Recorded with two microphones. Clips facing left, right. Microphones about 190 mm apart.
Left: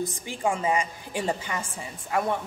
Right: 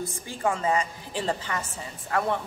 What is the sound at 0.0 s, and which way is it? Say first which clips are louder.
A woman's voice: left 1 dB; 15° left (ahead or behind).